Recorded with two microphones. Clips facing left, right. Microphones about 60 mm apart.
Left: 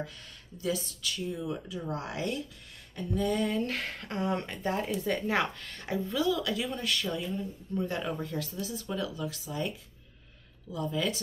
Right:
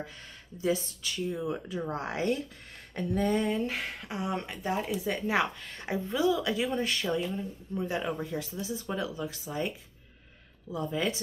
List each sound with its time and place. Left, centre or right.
0.6 s speech: right
2.9 s a sound: right
3.3 s speech: right
3.7 s speech: centre
5.7 s speech: right
7.3 s speech: centre; by 11.1 s right